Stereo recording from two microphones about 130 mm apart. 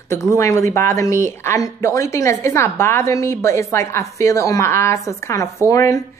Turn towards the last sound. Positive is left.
turn(degrees=25)  # may be behind; listen again after turning